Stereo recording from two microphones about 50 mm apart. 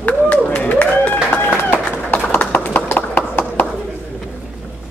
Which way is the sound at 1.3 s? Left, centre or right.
Left.